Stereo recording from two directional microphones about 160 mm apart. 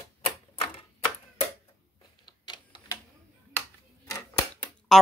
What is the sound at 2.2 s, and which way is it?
Printer, 30° left (ahead or behind).